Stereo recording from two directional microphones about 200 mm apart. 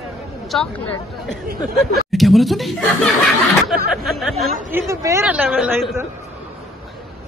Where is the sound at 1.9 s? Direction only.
Centre (ahead or behind).